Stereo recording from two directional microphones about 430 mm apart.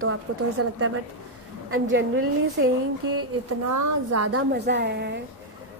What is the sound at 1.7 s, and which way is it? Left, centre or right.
A woman's voice, right.